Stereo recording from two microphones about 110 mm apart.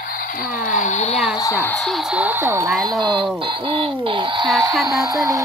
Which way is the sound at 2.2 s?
20° right (ahead or behind).